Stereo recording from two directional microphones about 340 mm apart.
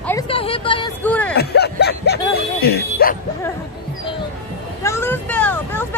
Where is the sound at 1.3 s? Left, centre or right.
Left.